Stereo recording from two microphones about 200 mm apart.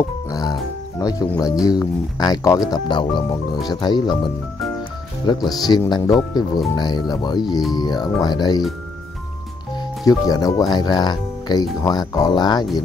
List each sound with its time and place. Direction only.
0.0 s music: 15° left (ahead or behind)
1.7 s speech: 20° left (ahead or behind)
10.0 s speech: 20° left (ahead or behind)